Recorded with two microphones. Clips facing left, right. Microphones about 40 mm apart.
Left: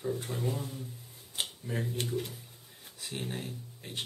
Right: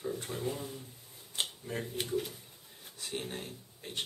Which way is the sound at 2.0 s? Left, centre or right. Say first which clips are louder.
Even; centre.